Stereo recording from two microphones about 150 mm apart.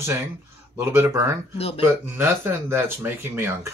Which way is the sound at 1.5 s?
40° left (ahead or behind).